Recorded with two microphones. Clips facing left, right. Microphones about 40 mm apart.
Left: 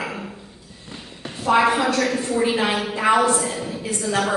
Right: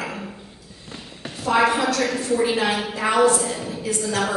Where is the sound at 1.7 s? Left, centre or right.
Left.